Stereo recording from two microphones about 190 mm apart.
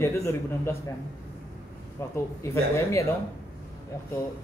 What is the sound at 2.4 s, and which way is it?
Speech, 15° left (ahead or behind).